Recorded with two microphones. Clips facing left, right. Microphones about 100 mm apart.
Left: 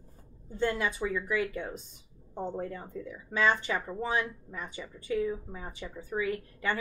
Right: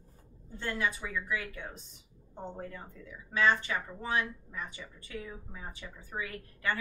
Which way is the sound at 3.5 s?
20° left (ahead or behind).